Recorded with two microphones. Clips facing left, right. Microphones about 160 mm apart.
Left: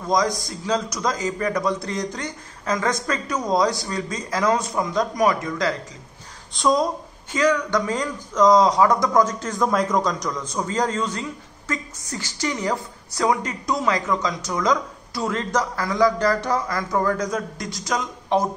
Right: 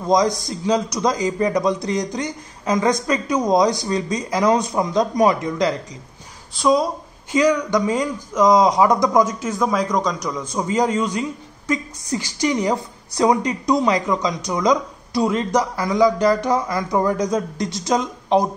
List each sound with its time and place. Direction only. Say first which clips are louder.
0.0 s speech: right 4 dB; 20° right (ahead or behind)
6.5 s speech: right 2 dB; 5° right (ahead or behind)
7.3 s speech: right 3 dB; 15° right (ahead or behind)